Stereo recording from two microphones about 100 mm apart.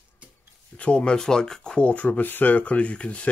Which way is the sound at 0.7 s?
10° left (ahead or behind).